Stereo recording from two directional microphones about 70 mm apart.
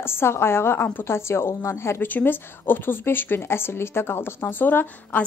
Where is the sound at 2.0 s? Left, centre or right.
Left.